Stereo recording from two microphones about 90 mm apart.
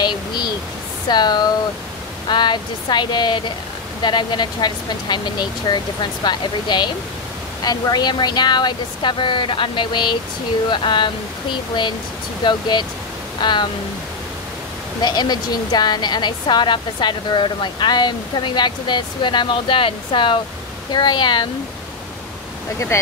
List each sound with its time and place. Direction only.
0.0 s a sound: 55° left (ahead or behind)
1.0 s a woman's voice: 55° left (ahead or behind)
12.4 s a woman's voice: 60° left (ahead or behind)
15.0 s a woman's voice: 50° left (ahead or behind); by 20.3 s 70° left (ahead or behind)
20.9 s a woman's voice: 55° left (ahead or behind)